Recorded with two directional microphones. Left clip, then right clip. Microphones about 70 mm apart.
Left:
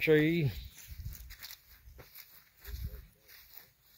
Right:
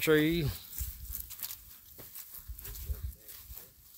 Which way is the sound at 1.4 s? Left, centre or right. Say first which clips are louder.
Left 1 dB; centre.